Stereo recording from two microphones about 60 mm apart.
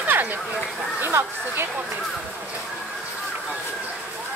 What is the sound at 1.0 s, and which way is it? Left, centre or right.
Speech, right.